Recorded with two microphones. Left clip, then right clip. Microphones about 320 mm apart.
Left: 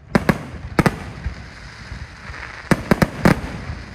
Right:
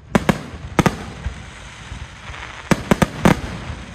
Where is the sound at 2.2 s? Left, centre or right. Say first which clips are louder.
Even; centre.